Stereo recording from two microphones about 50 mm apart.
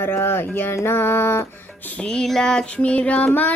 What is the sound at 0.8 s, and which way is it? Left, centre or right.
Music, left.